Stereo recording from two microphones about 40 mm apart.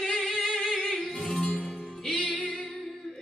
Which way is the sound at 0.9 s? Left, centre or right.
Left.